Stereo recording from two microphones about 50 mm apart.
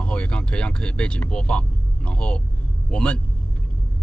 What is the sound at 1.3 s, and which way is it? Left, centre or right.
Speech, left.